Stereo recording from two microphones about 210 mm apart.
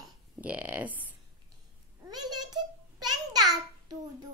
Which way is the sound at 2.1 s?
20° right (ahead or behind).